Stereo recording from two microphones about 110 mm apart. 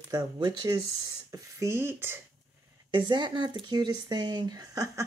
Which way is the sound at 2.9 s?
45° right (ahead or behind).